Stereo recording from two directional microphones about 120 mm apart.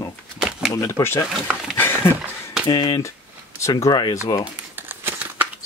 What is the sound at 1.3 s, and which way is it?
Speech, 5° right (ahead or behind).